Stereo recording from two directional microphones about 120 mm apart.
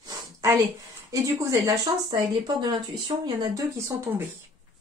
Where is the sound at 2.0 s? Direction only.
35° right (ahead or behind).